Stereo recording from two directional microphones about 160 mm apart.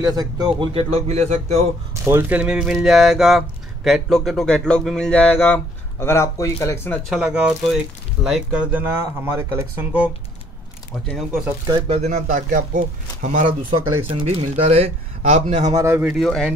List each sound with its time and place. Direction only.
0.0 s speech: 25° right (ahead or behind)
0.7 s speech: 40° right (ahead or behind)
2.0 s speech: 10° right (ahead or behind); by 7.0 s 15° left (ahead or behind)
7.1 s speech: 5° right (ahead or behind)
11.9 s speech: 45° right (ahead or behind)
14.0 s speech: 35° right (ahead or behind)
15.7 s speech: 15° right (ahead or behind)
16.1 s speech: centre (ahead or behind)